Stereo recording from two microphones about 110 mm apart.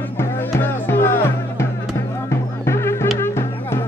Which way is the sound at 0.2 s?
20° left (ahead or behind).